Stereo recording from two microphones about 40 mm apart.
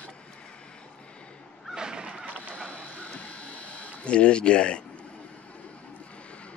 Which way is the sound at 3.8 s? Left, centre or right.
Left.